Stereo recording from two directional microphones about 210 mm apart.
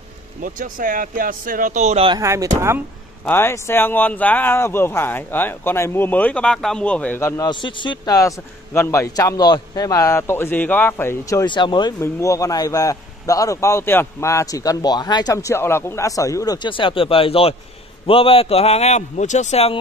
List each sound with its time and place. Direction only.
0.4 s speech: 40° right (ahead or behind); by 2.8 s 15° right (ahead or behind)
3.3 s a man's voice: 10° left (ahead or behind); by 19.8 s 30° left (ahead or behind)